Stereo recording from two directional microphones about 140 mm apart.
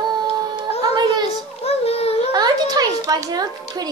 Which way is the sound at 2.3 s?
30° right (ahead or behind).